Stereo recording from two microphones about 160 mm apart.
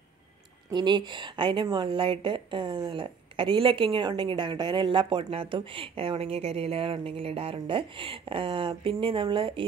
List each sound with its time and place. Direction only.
0.7 s a woman's voice: 25° right (ahead or behind)